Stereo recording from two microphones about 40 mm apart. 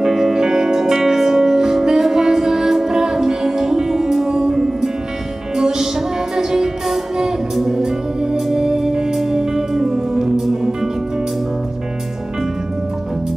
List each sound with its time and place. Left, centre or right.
0.0 s music: centre